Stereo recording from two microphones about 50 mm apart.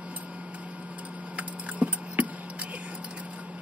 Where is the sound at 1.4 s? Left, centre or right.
Right.